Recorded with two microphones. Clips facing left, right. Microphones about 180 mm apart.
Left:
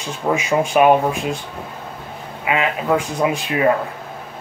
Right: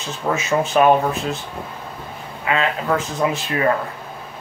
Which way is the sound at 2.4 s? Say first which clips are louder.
Left 1 dB; 15° left (ahead or behind).